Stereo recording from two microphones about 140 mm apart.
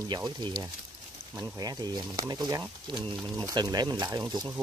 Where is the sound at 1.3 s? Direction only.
25° right (ahead or behind).